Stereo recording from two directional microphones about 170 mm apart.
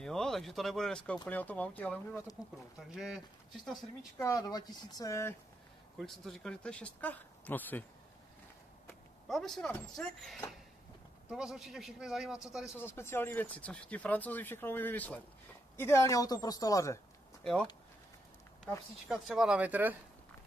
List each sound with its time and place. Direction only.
0.0 s speech: 5° left (ahead or behind)
2.9 s speech: centre (ahead or behind)
4.2 s speech: 20° left (ahead or behind)
5.9 s speech: centre (ahead or behind)
9.3 s speech: centre (ahead or behind)
12.7 s speech: 15° left (ahead or behind)
17.4 s speech: 5° left (ahead or behind)
19.0 s speech: centre (ahead or behind)